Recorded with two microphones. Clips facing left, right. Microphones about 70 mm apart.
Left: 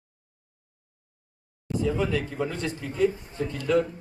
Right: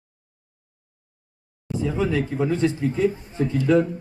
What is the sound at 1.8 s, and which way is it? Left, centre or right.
Speech, right.